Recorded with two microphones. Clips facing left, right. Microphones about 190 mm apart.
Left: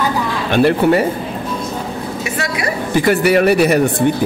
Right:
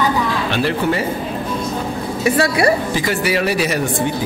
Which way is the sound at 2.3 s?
35° right (ahead or behind).